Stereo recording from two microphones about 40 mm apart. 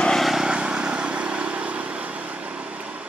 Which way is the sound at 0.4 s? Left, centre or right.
Right.